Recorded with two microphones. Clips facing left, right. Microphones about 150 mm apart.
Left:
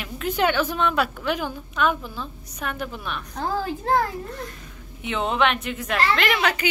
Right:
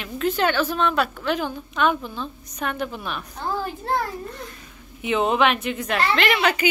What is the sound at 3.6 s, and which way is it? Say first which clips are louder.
Speech: left 5 dB; 90° left.